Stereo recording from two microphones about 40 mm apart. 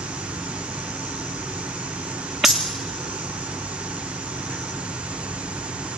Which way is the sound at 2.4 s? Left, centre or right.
Centre.